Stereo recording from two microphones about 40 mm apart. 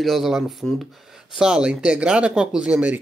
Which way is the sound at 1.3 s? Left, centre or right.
Right.